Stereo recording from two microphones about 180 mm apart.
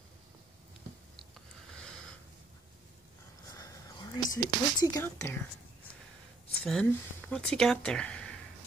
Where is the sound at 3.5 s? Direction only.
20° left (ahead or behind).